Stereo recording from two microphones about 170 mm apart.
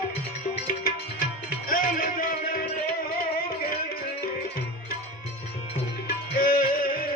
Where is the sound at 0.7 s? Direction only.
55° left (ahead or behind).